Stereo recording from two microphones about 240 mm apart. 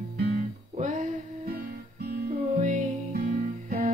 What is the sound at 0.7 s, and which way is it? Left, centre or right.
Music, right.